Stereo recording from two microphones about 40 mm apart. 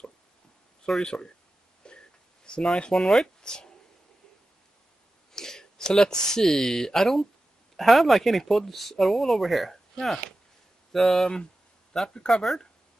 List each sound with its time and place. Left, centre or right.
0.8 s speech: centre
1.9 s a sound: left
3.4 s speech: centre
5.3 s speech: centre